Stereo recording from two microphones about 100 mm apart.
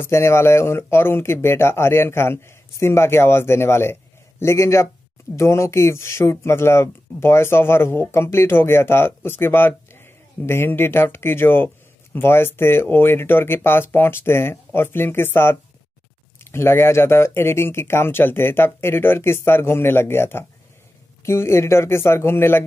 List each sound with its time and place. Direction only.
0.0 s speech: 25° left (ahead or behind)
16.5 s speech: 25° left (ahead or behind)